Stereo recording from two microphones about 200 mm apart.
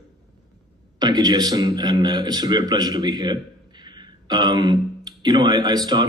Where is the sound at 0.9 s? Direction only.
20° right (ahead or behind).